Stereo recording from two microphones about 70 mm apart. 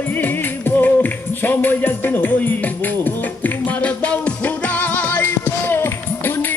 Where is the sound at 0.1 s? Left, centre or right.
Left.